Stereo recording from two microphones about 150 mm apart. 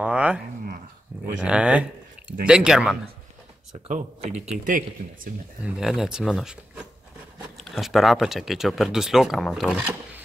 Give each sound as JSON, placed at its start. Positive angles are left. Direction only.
{"t": 0.0, "sound": "a sound", "side_deg": -10}
{"t": 1.4, "sound": "speech", "side_deg": -5}
{"t": 3.9, "sound": "speech", "side_deg": -50}
{"t": 5.6, "sound": "speech", "side_deg": 0}
{"t": 7.6, "sound": "speech", "side_deg": 0}